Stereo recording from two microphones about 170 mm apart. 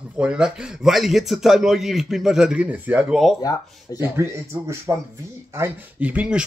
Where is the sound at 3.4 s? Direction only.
20° left (ahead or behind).